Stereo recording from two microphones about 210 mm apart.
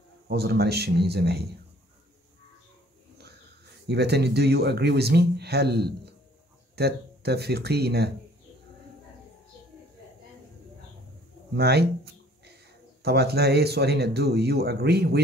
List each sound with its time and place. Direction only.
0.3 s speech: 50° right (ahead or behind)
3.8 s speech: 50° right (ahead or behind)
11.5 s a sound: 50° right (ahead or behind)
13.0 s speech: 50° right (ahead or behind)